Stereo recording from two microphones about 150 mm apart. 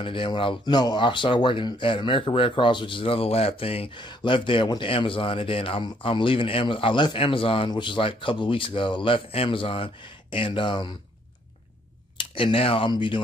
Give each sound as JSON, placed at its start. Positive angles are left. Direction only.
{"t": 0.0, "sound": "speech", "side_deg": 35}
{"t": 12.2, "sound": "speech", "side_deg": 35}